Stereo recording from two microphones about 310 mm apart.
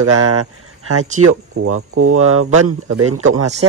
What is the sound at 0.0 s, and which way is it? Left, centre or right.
Speech, right.